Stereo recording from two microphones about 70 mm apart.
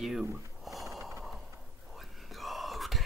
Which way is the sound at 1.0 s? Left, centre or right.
Right.